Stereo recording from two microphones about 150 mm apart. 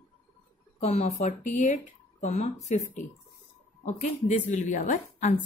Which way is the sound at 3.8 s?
55° left (ahead or behind).